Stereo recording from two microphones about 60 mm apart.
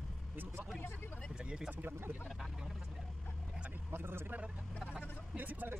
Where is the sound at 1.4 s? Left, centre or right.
Centre.